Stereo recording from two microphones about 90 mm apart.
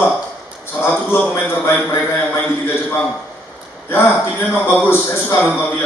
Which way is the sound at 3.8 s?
25° left (ahead or behind).